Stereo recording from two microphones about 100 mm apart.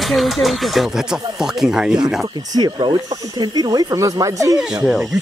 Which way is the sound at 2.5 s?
50° right (ahead or behind).